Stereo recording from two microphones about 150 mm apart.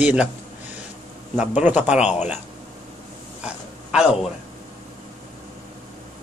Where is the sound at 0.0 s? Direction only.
10° right (ahead or behind).